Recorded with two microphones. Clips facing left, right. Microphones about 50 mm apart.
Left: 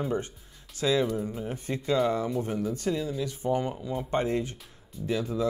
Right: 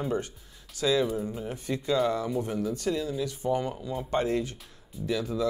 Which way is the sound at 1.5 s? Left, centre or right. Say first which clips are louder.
Even; left.